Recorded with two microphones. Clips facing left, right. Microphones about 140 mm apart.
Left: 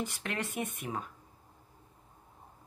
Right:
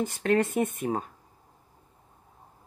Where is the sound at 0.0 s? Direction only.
50° right (ahead or behind).